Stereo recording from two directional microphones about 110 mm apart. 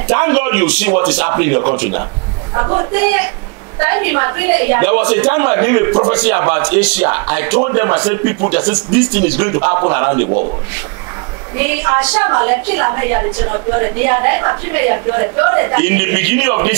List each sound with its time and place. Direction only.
0.1 s a man's voice: 20° right (ahead or behind)
11.6 s a man's voice: 20° right (ahead or behind)